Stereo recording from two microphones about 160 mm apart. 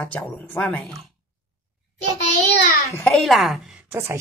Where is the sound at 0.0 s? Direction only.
10° left (ahead or behind).